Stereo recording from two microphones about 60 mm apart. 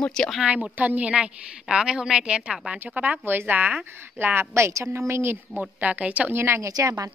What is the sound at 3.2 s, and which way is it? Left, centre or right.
A woman's voice, right.